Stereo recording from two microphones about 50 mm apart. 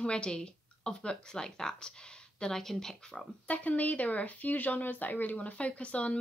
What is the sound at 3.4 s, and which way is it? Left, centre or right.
Speech, left.